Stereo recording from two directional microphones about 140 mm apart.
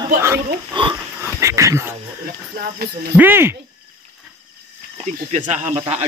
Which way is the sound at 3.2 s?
15° right (ahead or behind).